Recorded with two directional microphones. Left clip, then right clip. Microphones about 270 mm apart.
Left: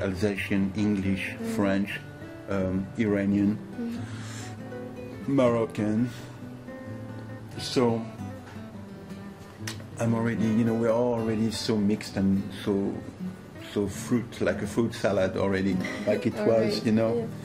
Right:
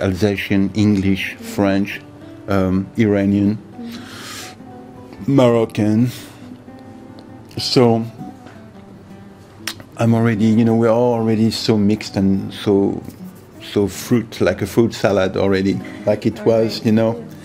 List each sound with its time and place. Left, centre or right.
0.0 s speech: right
2.4 s speech: right
5.3 s speech: right
7.5 s speech: right
9.7 s speech: right